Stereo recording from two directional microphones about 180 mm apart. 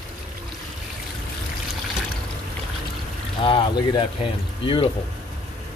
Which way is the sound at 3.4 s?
25° left (ahead or behind).